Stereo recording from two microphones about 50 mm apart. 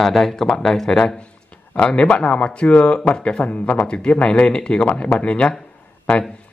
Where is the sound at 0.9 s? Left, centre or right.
Centre.